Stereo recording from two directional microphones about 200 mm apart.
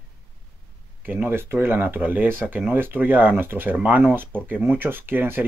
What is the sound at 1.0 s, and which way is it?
Speech, 10° right (ahead or behind).